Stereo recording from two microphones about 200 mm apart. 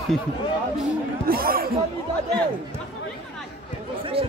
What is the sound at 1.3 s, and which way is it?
Speech, 50° right (ahead or behind).